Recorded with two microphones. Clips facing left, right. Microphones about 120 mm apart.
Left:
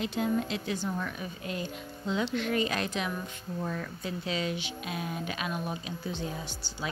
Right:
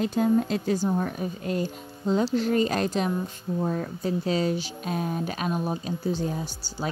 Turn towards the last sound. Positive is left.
turn(degrees=-40)  # may be behind; listen again after turning